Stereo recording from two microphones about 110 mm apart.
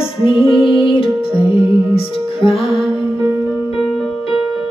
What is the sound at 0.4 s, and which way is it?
Music, centre (ahead or behind).